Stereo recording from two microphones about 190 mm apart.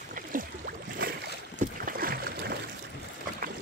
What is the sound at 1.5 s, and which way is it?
Boat, 50° right (ahead or behind).